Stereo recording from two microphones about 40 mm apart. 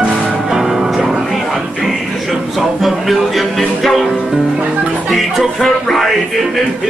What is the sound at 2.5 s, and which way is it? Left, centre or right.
Speech, centre.